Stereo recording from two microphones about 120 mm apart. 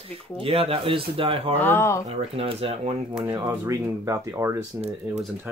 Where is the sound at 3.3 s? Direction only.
30° right (ahead or behind).